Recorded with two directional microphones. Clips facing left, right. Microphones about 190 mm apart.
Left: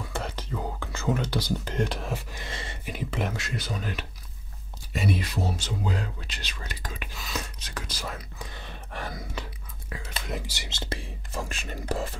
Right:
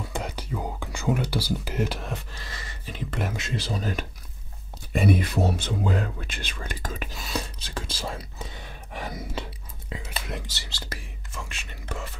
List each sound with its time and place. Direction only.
0.1 s speech: 15° right (ahead or behind)
2.3 s a sound: 25° left (ahead or behind)
2.8 s speech: 10° left (ahead or behind)
3.3 s speech: 25° right (ahead or behind)
4.9 s speech: 55° right (ahead or behind); by 8.5 s 25° right (ahead or behind)
8.6 s whispering: 15° right (ahead or behind)
10.0 s whispering: centre (ahead or behind)
10.4 s speech: 15° left (ahead or behind)
11.4 s speech: 40° left (ahead or behind)